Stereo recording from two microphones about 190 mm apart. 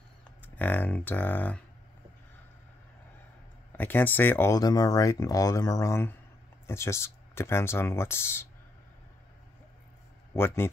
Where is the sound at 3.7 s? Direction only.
10° left (ahead or behind).